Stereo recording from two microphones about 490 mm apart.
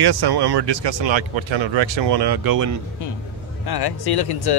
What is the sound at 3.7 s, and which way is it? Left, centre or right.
Speech, left.